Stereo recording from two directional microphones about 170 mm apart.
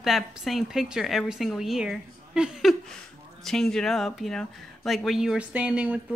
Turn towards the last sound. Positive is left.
turn(degrees=-5)  # may be behind; listen again after turning